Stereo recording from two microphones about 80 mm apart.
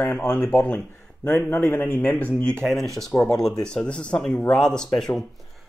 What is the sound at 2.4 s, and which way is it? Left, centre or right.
A man's voice, centre.